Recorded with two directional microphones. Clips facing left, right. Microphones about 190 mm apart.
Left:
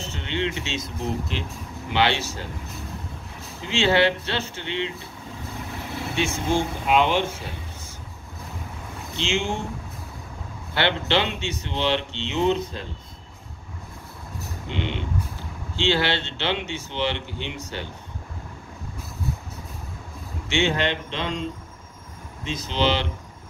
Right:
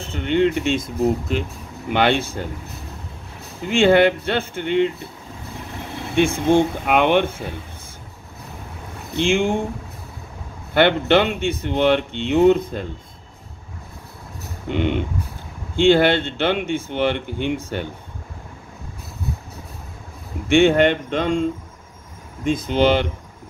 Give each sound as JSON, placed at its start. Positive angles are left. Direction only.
{"t": 0.0, "sound": "speech", "side_deg": -55}
{"t": 3.6, "sound": "speech", "side_deg": -50}
{"t": 6.1, "sound": "speech", "side_deg": -55}
{"t": 9.1, "sound": "speech", "side_deg": -55}
{"t": 10.7, "sound": "speech", "side_deg": -55}
{"t": 14.7, "sound": "speech", "side_deg": -50}
{"t": 20.4, "sound": "speech", "side_deg": -55}